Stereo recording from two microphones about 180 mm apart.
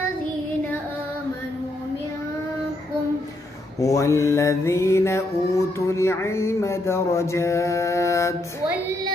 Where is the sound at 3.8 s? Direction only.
15° left (ahead or behind).